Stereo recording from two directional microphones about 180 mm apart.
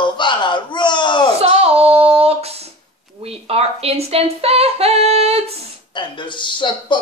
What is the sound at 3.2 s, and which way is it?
Humming, 35° right (ahead or behind).